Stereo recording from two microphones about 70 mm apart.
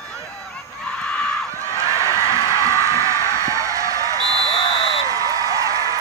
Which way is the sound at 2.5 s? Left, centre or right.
Right.